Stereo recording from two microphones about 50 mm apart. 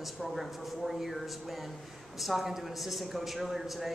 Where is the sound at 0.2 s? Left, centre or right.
Centre.